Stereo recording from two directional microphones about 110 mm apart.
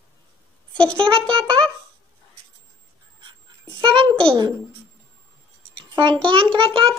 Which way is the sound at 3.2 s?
45° right (ahead or behind).